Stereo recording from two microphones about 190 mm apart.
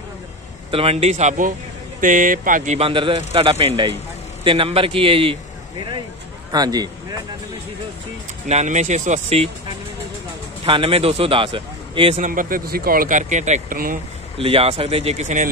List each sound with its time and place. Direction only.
0.7 s a man's voice: 30° right (ahead or behind)
6.5 s a man's voice: 20° right (ahead or behind)
8.5 s speech: 35° right (ahead or behind)
10.6 s speech: 30° right (ahead or behind)
12.2 s speech: 45° right (ahead or behind)
14.4 s speech: 30° right (ahead or behind)